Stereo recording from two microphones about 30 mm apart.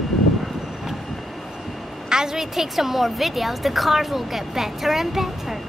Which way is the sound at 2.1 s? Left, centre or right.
Centre.